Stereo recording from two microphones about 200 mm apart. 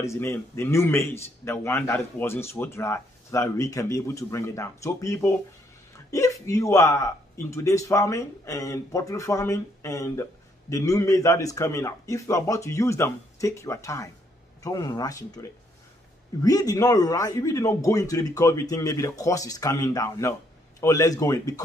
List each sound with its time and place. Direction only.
0.0 s a man's voice: 15° left (ahead or behind)
16.4 s a man's voice: 20° left (ahead or behind)